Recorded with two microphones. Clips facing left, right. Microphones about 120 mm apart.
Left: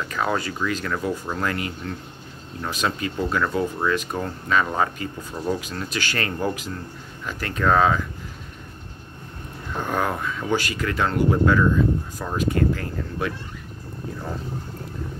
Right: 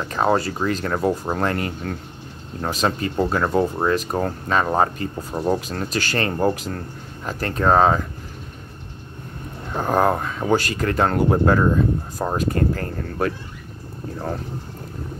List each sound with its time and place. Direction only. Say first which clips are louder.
0.0 s speech: right 5 dB; 35° right (ahead or behind)
9.8 s speech: right 6 dB; 35° right (ahead or behind)